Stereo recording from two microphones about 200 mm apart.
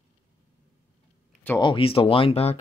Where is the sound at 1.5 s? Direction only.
25° left (ahead or behind).